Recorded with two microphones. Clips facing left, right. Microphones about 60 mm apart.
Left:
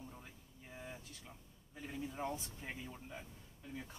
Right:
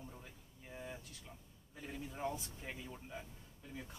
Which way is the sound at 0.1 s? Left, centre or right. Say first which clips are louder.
Even; centre.